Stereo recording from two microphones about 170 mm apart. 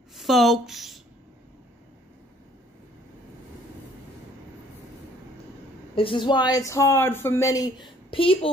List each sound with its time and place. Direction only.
0.1 s a woman's voice: centre (ahead or behind)
5.9 s speech: 30° left (ahead or behind)